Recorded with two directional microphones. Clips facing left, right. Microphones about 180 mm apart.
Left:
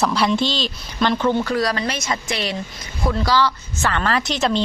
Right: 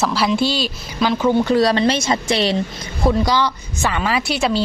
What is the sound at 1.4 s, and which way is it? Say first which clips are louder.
A woman's voice: right 6 dB; 25° right (ahead or behind).